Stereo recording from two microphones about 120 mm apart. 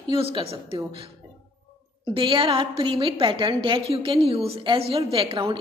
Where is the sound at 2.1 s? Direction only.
45° right (ahead or behind).